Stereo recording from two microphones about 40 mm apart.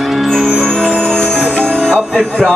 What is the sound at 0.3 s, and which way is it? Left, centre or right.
Music, centre.